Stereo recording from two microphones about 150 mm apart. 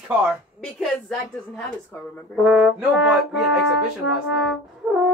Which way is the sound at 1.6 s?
5° left (ahead or behind).